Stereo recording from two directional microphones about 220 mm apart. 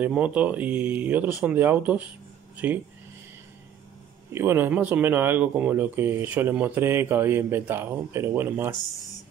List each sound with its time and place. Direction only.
0.0 s speech: 5° right (ahead or behind)
4.3 s speech: 10° right (ahead or behind)